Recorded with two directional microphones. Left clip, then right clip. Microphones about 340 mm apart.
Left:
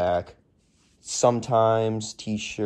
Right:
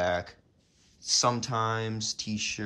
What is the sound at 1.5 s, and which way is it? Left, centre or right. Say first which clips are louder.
Speech: left 10 dB; centre.